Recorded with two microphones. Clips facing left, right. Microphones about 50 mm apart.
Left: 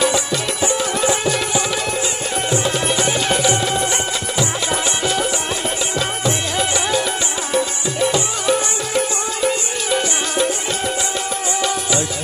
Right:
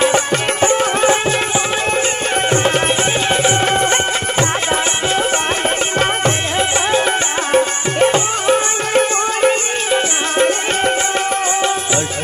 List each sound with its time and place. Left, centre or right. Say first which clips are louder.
0.0 s music: right 4 dB; right
6.6 s music: right 4 dB; right